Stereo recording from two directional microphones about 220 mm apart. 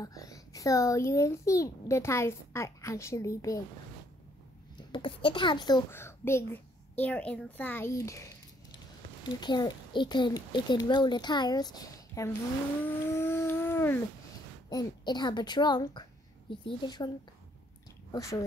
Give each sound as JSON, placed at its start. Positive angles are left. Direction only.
{"t": 0.0, "sound": "a child's voice", "side_deg": 15}
{"t": 4.9, "sound": "a child's voice", "side_deg": 25}
{"t": 12.8, "sound": "vehicle", "side_deg": 10}
{"t": 14.7, "sound": "a woman's voice", "side_deg": 20}
{"t": 18.1, "sound": "speech", "side_deg": 15}